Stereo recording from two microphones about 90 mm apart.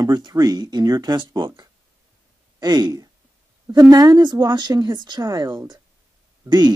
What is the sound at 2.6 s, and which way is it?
Speech, 50° right (ahead or behind).